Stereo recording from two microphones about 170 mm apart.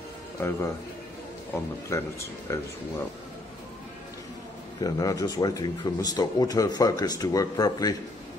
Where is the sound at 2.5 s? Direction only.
15° left (ahead or behind).